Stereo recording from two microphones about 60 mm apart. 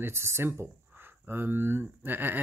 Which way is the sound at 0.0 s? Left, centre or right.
Right.